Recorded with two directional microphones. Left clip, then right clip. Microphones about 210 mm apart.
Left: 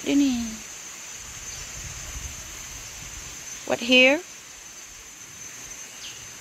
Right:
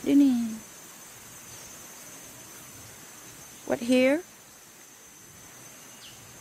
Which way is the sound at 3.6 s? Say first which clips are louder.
Left 6 dB; 5° right (ahead or behind).